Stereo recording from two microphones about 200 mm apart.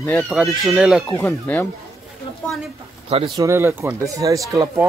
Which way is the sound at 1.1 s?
10° left (ahead or behind).